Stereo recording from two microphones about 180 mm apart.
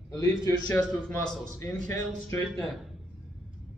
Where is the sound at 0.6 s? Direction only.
15° left (ahead or behind).